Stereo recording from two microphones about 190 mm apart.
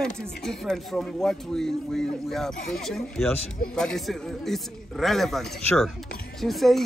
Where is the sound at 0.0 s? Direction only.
5° left (ahead or behind).